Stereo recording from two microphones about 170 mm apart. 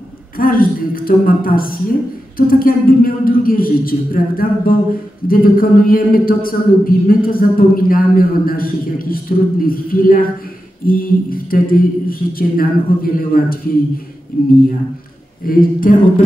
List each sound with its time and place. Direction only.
0.4 s a man's voice: 60° left (ahead or behind)
15.4 s a man's voice: 55° left (ahead or behind)